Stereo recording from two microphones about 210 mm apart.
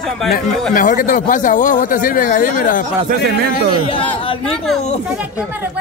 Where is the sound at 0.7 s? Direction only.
40° left (ahead or behind).